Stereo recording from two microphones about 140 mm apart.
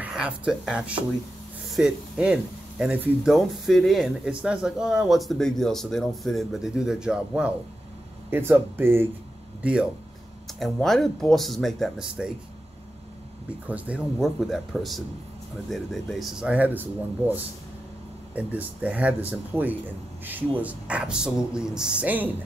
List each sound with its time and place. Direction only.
0.0 s speech: 5° right (ahead or behind)
10.6 s speech: centre (ahead or behind)
13.7 s speech: 10° right (ahead or behind)